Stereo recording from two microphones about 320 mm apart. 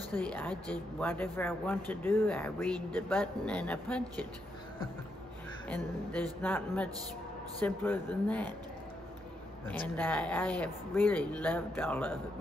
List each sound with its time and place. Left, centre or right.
0.2 s speech: centre
6.4 s speech: centre
9.7 s speech: centre